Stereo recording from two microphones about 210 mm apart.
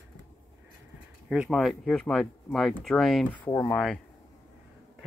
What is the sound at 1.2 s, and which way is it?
Speech, centre (ahead or behind).